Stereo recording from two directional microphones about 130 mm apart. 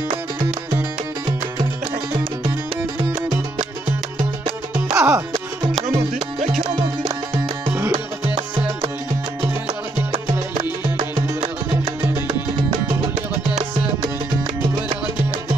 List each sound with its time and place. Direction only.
4.9 s music: 25° right (ahead or behind)
11.1 s music: 45° right (ahead or behind)